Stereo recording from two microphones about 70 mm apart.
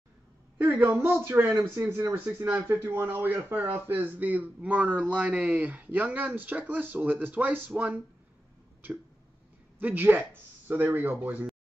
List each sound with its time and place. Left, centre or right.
0.7 s speech: right
2.1 s speech: right
9.8 s speech: right